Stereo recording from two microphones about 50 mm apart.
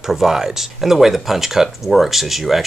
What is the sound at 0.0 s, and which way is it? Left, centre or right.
Speech, centre.